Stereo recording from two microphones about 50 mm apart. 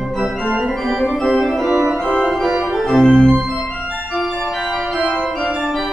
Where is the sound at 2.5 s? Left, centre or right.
Centre.